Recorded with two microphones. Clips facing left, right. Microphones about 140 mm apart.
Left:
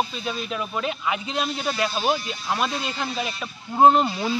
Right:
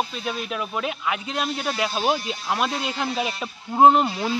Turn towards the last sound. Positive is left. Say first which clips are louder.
# right 1 dB
turn(degrees=-10)  # may be behind; listen again after turning